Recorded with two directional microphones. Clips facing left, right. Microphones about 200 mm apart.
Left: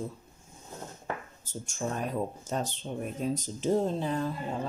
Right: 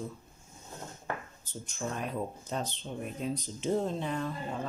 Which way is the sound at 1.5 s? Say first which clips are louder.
Left 3 dB; 45° left (ahead or behind).